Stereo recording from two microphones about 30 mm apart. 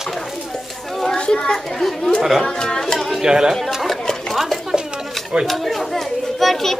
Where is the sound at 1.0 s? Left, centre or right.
Left.